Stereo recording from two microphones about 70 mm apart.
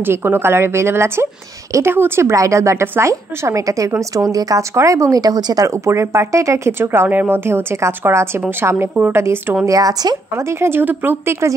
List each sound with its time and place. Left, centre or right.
0.0 s speech: right
2.3 s speech: right
4.7 s speech: right
5.7 s speech: right
9.7 s speech: right
10.3 s speech: right
11.4 s speech: right